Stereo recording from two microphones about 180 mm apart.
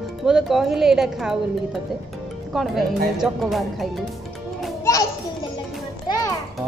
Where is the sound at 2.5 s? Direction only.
Centre (ahead or behind).